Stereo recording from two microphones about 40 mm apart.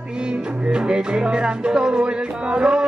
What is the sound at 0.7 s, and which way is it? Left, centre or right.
Music, right.